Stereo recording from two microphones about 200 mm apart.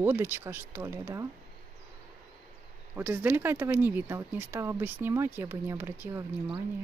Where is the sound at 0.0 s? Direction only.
10° right (ahead or behind).